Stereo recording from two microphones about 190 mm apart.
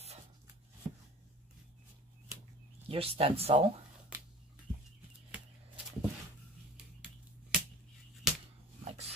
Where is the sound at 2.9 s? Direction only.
30° right (ahead or behind).